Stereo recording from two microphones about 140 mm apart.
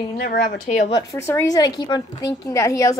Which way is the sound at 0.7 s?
55° left (ahead or behind).